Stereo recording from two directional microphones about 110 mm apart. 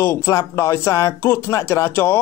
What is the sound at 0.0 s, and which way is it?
Speech, 25° left (ahead or behind).